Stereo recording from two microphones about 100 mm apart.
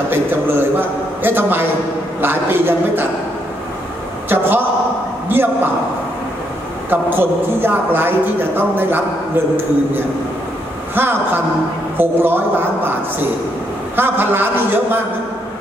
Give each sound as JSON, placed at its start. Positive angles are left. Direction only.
{"t": 0.1, "sound": "a woman's voice", "side_deg": -20}
{"t": 4.3, "sound": "a woman's voice", "side_deg": -20}
{"t": 6.9, "sound": "a woman's voice", "side_deg": -20}
{"t": 11.0, "sound": "a woman's voice", "side_deg": -20}
{"t": 13.9, "sound": "a woman's voice", "side_deg": -20}